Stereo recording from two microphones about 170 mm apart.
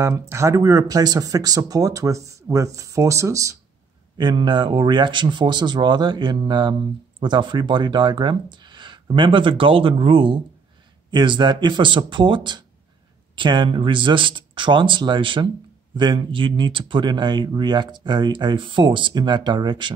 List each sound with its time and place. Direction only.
0.0 s a man's voice: 15° right (ahead or behind)